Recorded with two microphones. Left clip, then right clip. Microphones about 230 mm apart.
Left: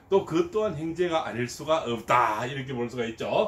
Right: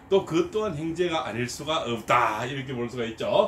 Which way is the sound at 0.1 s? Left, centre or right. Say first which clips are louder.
Right 1 dB; centre.